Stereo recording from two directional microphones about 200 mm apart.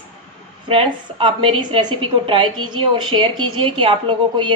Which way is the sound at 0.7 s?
25° right (ahead or behind).